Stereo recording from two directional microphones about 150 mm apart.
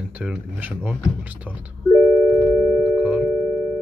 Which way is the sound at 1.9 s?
Centre (ahead or behind).